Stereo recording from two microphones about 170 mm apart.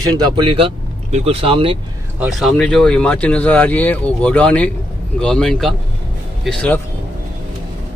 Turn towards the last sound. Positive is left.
turn(degrees=5)  # may be behind; listen again after turning